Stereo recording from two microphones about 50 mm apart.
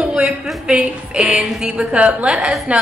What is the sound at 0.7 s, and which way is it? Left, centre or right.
A woman's voice, right.